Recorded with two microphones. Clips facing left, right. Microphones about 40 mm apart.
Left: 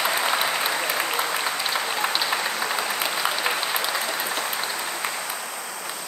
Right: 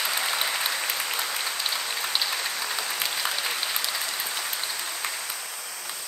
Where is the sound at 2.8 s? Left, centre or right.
Left.